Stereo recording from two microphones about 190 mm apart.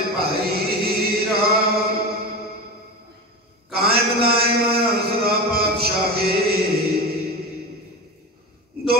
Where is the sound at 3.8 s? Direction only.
55° right (ahead or behind).